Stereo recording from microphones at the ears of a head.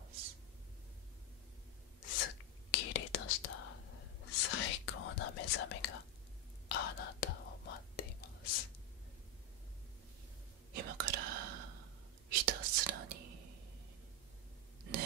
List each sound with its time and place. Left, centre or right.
2.0 s whispering: left
10.7 s whispering: right